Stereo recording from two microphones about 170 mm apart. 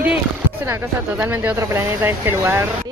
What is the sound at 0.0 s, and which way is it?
A woman's voice, 10° right (ahead or behind).